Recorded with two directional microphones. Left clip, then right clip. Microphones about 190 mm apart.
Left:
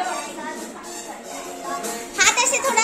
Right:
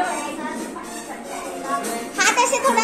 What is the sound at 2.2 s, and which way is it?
Music, 35° left (ahead or behind).